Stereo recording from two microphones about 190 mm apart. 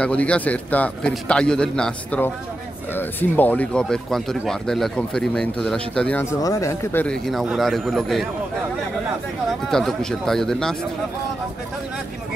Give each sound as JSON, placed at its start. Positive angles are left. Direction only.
{"t": 0.0, "sound": "a man's voice", "side_deg": 5}
{"t": 9.5, "sound": "speech", "side_deg": 0}